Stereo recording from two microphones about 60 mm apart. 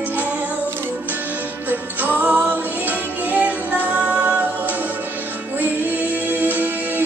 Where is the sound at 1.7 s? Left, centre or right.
Right.